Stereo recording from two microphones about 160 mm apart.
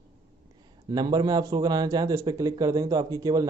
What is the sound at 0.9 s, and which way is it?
A man's voice, 25° right (ahead or behind).